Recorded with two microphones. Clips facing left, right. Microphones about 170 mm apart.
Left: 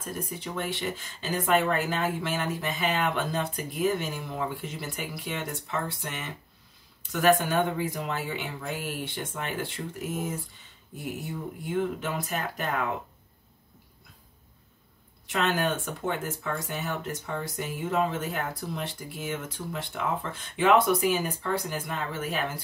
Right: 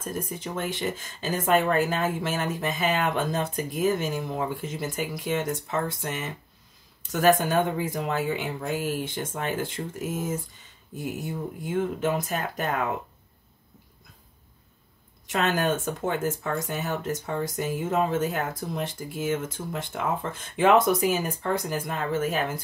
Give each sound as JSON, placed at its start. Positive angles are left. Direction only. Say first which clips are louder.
{"t": 0.0, "sound": "speech", "louder": "right 3 dB", "side_deg": -45}
{"t": 11.7, "sound": "speech", "louder": "right 3 dB", "side_deg": -45}
{"t": 15.2, "sound": "speech", "louder": "right 2 dB", "side_deg": -45}